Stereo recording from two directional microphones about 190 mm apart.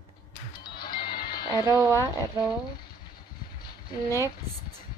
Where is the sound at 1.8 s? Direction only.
20° right (ahead or behind).